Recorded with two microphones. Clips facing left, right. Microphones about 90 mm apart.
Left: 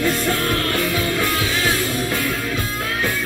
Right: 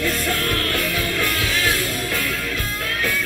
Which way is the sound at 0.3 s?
5° left (ahead or behind).